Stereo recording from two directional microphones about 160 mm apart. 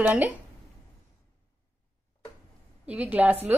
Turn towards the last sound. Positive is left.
turn(degrees=-10)  # may be behind; listen again after turning